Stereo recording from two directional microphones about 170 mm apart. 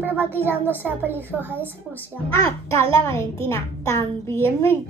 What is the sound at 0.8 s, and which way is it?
Speech, 10° right (ahead or behind).